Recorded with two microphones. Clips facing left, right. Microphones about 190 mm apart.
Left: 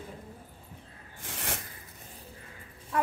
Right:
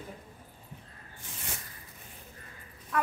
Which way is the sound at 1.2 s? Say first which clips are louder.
Left 6 dB; 75° left (ahead or behind).